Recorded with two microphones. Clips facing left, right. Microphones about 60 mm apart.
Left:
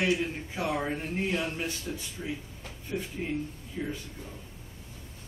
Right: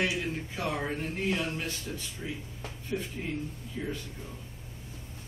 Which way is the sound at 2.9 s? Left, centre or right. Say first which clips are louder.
Left 2 dB; centre.